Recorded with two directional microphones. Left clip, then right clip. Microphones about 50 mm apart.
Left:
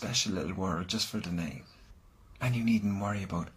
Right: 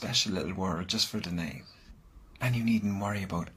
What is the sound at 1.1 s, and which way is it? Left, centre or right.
Speech, right.